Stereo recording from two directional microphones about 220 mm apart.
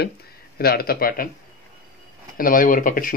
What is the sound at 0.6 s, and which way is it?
Speech, 45° left (ahead or behind).